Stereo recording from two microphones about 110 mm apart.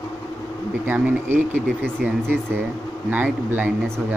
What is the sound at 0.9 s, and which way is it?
Speech, 20° right (ahead or behind).